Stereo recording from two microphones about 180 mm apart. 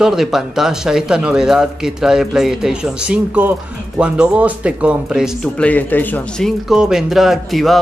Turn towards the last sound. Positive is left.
turn(degrees=0)  # may be behind; listen again after turning